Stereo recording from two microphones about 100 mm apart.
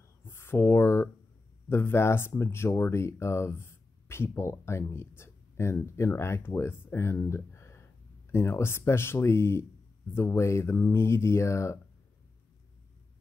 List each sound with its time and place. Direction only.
0.2 s speech: 25° left (ahead or behind)